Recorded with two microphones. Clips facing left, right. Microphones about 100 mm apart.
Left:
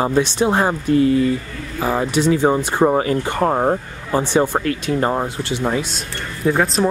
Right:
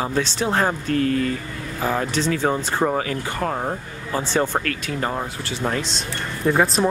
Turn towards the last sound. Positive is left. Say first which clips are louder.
# left 1 dB
turn(degrees=0)  # may be behind; listen again after turning